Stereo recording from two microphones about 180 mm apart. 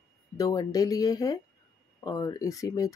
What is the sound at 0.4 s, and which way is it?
Speech, 20° left (ahead or behind).